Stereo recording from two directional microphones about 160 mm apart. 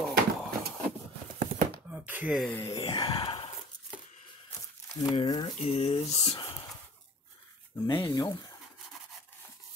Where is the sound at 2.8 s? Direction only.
25° left (ahead or behind).